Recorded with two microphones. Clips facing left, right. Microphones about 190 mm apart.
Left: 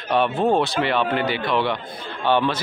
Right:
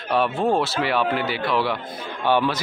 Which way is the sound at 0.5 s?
5° right (ahead or behind).